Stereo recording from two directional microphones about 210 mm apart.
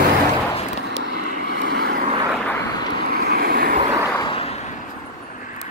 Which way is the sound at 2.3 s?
5° left (ahead or behind).